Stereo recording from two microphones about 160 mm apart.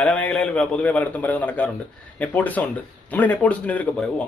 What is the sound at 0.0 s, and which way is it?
A man's voice, 10° left (ahead or behind).